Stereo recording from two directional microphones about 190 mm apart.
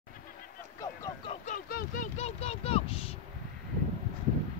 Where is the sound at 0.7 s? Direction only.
15° left (ahead or behind).